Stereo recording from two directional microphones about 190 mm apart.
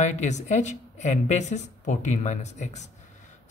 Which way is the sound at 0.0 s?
40° left (ahead or behind).